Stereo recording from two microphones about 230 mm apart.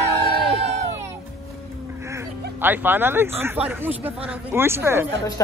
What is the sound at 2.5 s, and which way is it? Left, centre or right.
Speech, centre.